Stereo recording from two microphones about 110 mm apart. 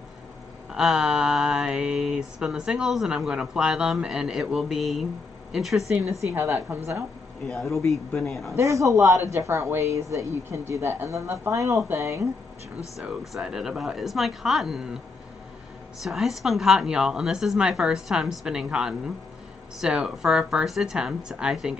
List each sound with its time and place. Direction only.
0.7 s mantra: 5° right (ahead or behind)
6.3 s speech: 20° right (ahead or behind)
7.4 s mantra: centre (ahead or behind)
8.5 s speech: 30° right (ahead or behind)
13.3 s mantra: 5° right (ahead or behind)
16.0 s mantra: centre (ahead or behind)
18.4 s a woman's voice: 5° right (ahead or behind)
19.8 s mantra: 5° right (ahead or behind)